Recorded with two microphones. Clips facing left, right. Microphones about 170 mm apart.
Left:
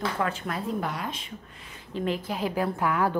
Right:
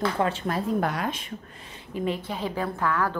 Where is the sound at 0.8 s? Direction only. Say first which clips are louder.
Right 5 dB; 65° right (ahead or behind).